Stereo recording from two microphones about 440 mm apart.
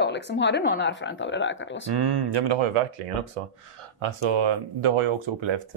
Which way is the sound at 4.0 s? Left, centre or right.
Right.